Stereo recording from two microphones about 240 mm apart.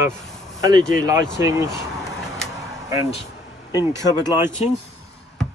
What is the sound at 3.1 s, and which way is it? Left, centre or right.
Vehicle, left.